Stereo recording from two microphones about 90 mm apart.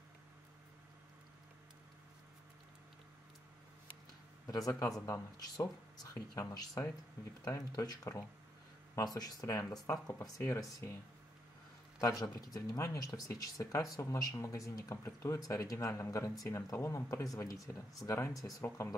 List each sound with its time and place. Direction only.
4.5 s speech: 40° left (ahead or behind)
12.0 s speech: 40° left (ahead or behind)